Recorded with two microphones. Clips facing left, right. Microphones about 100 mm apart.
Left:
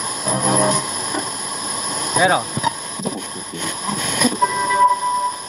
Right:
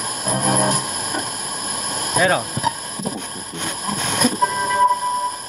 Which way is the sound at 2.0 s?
Centre (ahead or behind).